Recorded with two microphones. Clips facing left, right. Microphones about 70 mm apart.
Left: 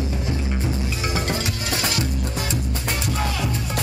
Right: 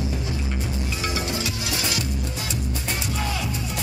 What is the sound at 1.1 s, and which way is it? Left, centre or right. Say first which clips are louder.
Music: left 2 dB; left.